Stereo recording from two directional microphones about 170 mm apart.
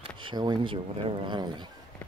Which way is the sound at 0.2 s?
25° right (ahead or behind).